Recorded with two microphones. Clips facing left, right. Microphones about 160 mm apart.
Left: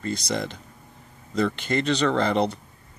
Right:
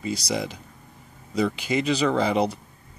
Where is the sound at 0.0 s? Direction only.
5° right (ahead or behind).